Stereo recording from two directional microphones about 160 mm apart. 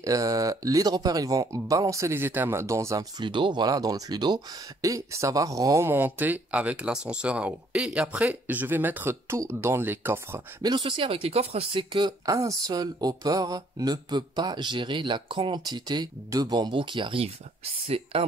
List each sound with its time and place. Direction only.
0.0 s speech: 20° right (ahead or behind)
10.8 s speech: 35° right (ahead or behind)